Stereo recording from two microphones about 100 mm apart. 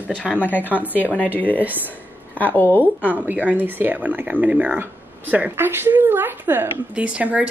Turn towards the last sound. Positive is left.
turn(degrees=-15)  # may be behind; listen again after turning